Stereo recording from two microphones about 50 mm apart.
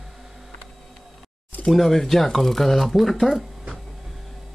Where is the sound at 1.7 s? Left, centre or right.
Centre.